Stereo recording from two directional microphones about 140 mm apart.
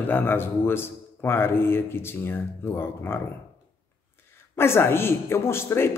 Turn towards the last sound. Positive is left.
turn(degrees=20)  # may be behind; listen again after turning